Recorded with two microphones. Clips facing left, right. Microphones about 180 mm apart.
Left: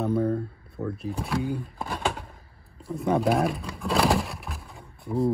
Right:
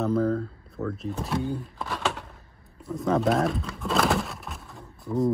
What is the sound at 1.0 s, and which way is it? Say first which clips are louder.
Speech: even; 10° left (ahead or behind).